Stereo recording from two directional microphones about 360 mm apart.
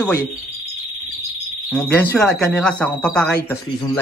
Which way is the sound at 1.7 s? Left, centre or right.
Centre.